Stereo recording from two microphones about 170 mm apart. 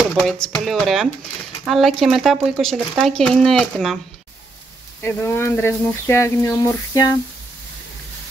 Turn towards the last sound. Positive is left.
turn(degrees=20)  # may be behind; listen again after turning